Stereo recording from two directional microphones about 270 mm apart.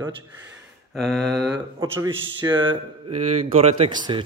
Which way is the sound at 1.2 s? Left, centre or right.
Right.